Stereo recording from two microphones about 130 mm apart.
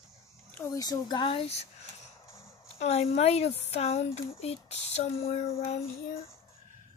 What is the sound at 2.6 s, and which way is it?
Speech, 55° left (ahead or behind).